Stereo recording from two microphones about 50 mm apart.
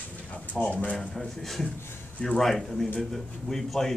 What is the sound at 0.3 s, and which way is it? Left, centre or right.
Speech, left.